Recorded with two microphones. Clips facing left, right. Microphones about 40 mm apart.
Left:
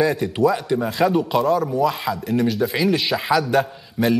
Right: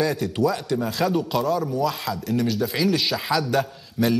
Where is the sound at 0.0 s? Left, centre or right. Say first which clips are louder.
Left 4 dB; centre.